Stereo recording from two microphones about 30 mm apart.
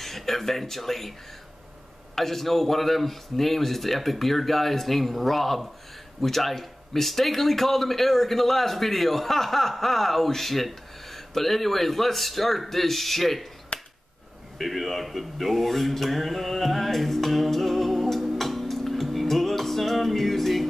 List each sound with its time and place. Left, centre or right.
0.0 s speech: centre
2.1 s speech: centre
13.7 s a sound: left
14.6 s speech: centre
18.4 s music: centre